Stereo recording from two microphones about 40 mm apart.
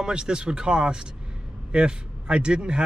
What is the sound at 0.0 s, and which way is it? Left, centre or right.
Speech, right.